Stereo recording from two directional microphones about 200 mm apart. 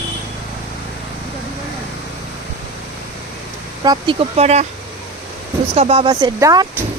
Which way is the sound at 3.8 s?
20° right (ahead or behind).